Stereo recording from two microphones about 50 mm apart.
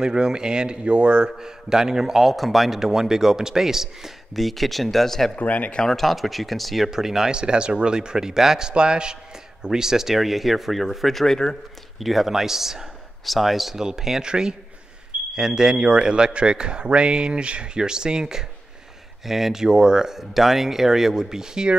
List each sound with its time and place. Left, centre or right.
0.0 s a man's voice: centre
5.4 s speech: left
5.8 s a man's voice: centre
12.0 s a man's voice: centre
19.2 s a man's voice: centre